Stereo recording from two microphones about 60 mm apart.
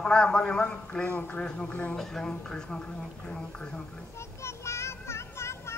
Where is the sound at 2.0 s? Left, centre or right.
Centre.